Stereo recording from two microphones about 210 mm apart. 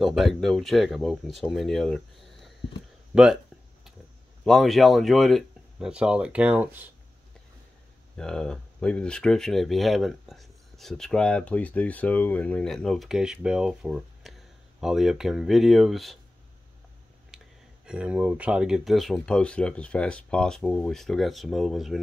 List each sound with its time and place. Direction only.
0.0 s speech: centre (ahead or behind)
4.5 s speech: centre (ahead or behind)
8.2 s speech: 5° left (ahead or behind)
17.8 s speech: 5° right (ahead or behind)